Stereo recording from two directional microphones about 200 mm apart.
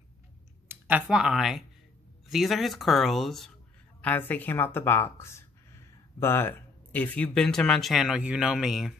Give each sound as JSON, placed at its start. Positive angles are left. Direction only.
{"t": 0.7, "sound": "speech", "side_deg": -10}